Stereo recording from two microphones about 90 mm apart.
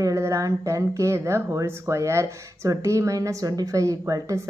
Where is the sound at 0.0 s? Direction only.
35° right (ahead or behind).